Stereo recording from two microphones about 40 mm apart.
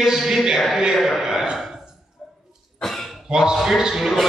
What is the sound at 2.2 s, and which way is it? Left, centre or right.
Dog, centre.